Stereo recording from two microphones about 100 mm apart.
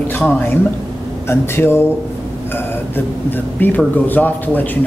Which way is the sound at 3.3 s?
20° left (ahead or behind).